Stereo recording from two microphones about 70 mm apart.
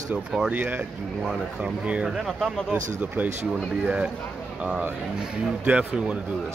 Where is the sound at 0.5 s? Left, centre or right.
Right.